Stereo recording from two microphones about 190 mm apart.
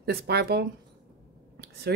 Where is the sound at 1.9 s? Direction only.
60° right (ahead or behind).